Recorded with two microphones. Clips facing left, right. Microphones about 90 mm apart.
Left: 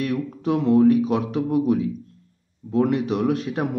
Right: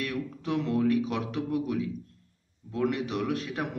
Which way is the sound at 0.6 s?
35° left (ahead or behind).